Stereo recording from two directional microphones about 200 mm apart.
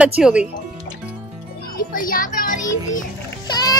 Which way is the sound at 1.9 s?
45° left (ahead or behind).